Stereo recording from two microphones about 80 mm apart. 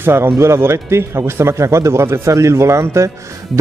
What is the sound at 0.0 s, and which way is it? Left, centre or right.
Speech, right.